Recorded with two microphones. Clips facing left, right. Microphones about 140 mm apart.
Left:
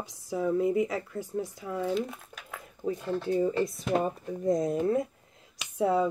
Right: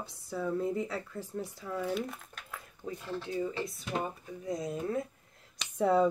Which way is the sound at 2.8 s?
30° left (ahead or behind).